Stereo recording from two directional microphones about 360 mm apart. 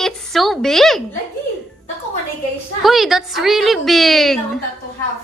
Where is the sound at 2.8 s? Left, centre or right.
Centre.